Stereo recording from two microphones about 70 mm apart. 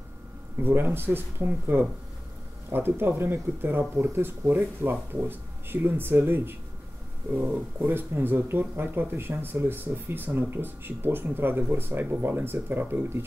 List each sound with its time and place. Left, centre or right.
0.6 s speech: right